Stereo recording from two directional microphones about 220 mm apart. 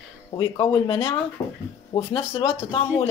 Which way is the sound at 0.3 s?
20° left (ahead or behind).